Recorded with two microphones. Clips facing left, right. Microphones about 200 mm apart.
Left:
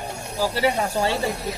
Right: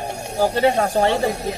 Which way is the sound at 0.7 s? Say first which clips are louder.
Right 5 dB; 60° right (ahead or behind).